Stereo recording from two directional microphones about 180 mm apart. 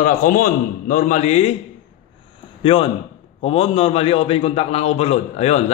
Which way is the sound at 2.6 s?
30° left (ahead or behind).